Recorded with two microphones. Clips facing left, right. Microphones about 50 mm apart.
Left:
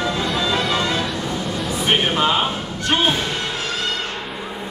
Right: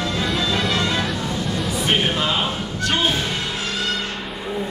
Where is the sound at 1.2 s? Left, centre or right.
Centre.